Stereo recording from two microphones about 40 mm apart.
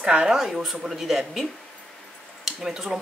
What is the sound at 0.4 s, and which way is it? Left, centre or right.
Speech, centre.